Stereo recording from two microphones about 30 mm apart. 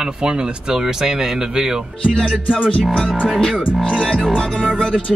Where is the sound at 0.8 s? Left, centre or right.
Centre.